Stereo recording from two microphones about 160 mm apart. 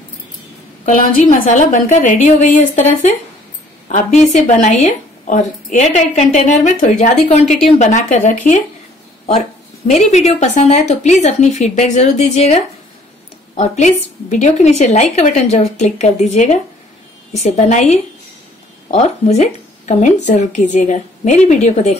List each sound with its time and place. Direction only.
0.8 s a woman's voice: 50° left (ahead or behind)
9.8 s a woman's voice: 45° left (ahead or behind)